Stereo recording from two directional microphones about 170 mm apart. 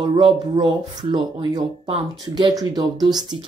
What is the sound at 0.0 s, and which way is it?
Speech, 25° right (ahead or behind).